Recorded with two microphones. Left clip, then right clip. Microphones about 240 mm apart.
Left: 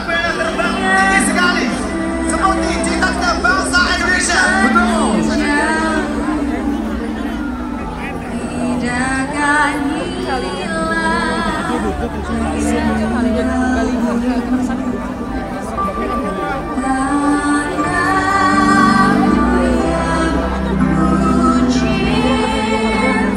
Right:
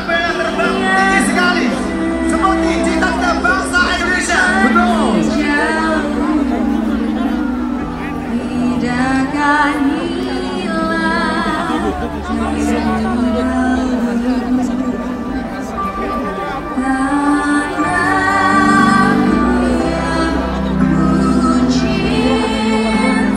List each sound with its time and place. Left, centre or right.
0.1 s music: left
3.0 s music: left
9.1 s music: left
18.1 s music: left
21.5 s music: left